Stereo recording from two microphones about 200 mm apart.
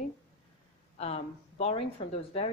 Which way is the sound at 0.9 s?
30° left (ahead or behind).